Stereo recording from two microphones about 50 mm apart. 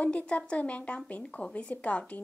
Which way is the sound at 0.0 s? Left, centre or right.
Left.